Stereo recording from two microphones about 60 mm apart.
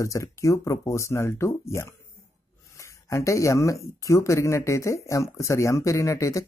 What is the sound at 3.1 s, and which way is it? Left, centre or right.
Speech, left.